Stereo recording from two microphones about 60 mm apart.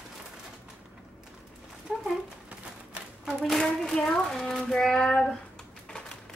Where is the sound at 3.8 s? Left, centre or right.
Centre.